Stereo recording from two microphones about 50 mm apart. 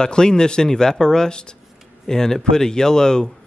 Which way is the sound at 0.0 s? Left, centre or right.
Centre.